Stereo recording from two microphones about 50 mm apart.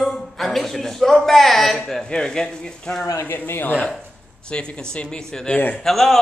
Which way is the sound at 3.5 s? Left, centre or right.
Left.